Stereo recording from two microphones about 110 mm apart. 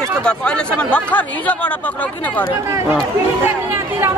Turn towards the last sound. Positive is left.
turn(degrees=-20)  # may be behind; listen again after turning